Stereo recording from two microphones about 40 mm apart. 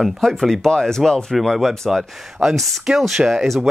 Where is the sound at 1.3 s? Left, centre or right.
Centre.